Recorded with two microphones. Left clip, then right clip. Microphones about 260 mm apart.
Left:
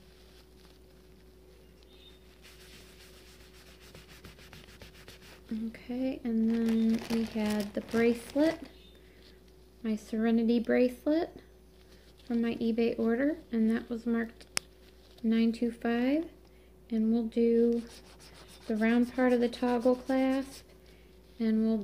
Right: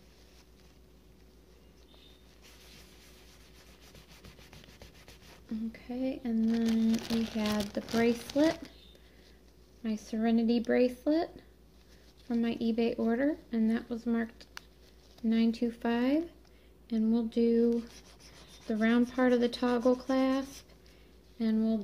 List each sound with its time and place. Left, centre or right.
3.9 s sanding: centre
5.7 s speech: centre
6.4 s speech: centre
7.3 s speech: centre
9.8 s speech: centre